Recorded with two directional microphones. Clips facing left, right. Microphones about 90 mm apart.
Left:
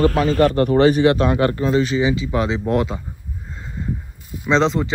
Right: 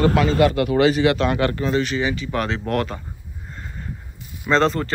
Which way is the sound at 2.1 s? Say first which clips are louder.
Left 4 dB; 20° left (ahead or behind).